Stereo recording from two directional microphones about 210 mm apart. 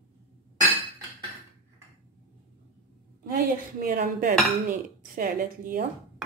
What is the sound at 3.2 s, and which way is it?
Dishes, 45° right (ahead or behind).